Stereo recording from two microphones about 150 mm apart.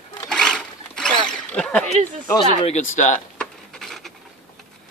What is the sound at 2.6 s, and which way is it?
Speech, 50° left (ahead or behind).